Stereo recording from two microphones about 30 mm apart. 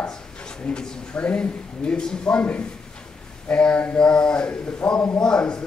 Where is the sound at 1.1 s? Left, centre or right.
Left.